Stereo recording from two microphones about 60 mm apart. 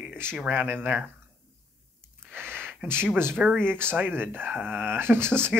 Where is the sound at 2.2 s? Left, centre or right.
Right.